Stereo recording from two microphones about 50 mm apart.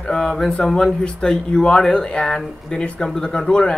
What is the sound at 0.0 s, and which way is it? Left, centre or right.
Speech, centre.